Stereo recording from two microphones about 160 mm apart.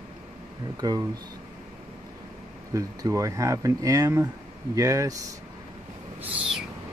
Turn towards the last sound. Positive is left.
turn(degrees=-5)  # may be behind; listen again after turning